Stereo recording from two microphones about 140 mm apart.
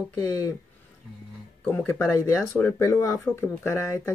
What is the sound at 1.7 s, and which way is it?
Speech, 15° left (ahead or behind).